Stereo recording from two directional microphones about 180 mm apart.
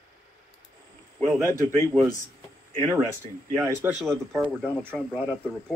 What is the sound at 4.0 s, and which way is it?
Speech, centre (ahead or behind).